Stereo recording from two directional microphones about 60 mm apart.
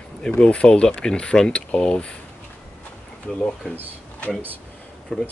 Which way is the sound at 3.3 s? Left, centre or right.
Centre.